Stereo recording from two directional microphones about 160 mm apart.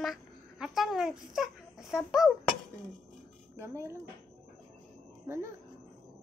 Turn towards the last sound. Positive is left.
turn(degrees=-15)  # may be behind; listen again after turning